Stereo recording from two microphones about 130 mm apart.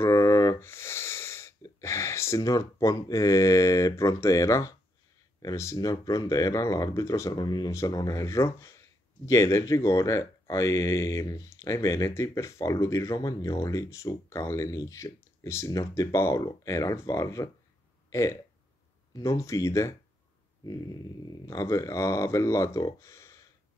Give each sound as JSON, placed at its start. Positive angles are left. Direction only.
{"t": 0.0, "sound": "wheeze", "side_deg": 25}
{"t": 5.4, "sound": "speech", "side_deg": 25}